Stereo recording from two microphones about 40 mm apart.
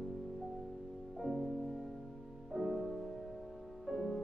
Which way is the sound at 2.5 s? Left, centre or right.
Centre.